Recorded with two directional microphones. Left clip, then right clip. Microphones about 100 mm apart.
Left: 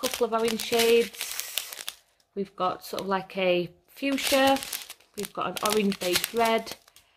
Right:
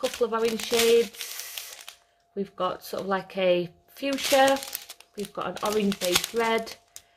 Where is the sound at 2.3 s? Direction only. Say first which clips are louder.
Even; 20° left (ahead or behind).